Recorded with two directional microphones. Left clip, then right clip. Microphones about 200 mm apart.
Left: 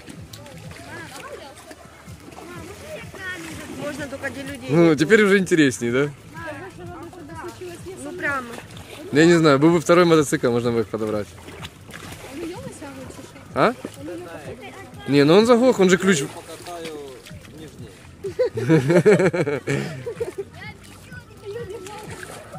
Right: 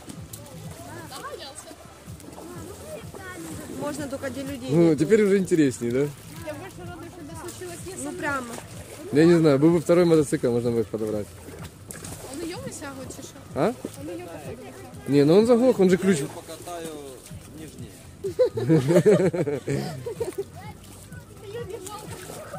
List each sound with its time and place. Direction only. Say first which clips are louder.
3.9 s speech: left 2 dB; 60° right (ahead or behind)
4.7 s speech: left 4 dB; 5° left (ahead or behind)
8.2 s a sound: left 4 dB; 60° right (ahead or behind)
9.1 s speech: left 3 dB; 5° right (ahead or behind)
10.9 s speech: left 3 dB; 10° left (ahead or behind)
13.5 s a sound: left 6 dB; centre (ahead or behind)
15.0 s speech: left 3 dB; centre (ahead or behind)
18.7 s speech: left 5 dB; centre (ahead or behind)